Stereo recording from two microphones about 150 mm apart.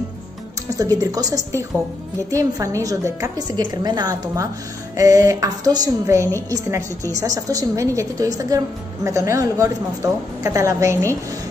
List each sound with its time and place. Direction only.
0.7 s a woman's voice: 20° right (ahead or behind)